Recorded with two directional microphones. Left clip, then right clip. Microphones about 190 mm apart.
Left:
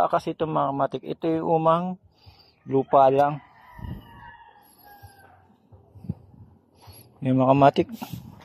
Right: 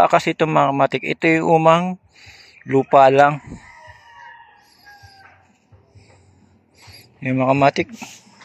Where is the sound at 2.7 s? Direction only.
10° right (ahead or behind).